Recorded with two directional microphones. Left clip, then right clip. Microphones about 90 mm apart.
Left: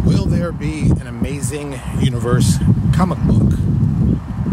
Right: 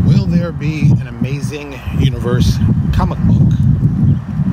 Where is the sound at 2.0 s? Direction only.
30° left (ahead or behind).